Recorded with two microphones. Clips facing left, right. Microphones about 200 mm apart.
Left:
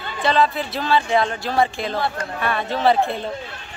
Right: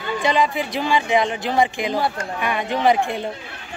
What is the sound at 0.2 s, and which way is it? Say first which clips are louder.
A man's voice: left 2 dB; 15° right (ahead or behind).